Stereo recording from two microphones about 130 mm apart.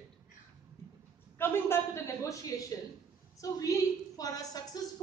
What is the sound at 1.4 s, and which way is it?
A woman's voice, 15° left (ahead or behind).